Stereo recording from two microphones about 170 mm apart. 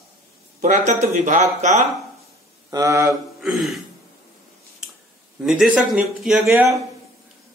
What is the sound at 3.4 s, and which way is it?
Speech, centre (ahead or behind).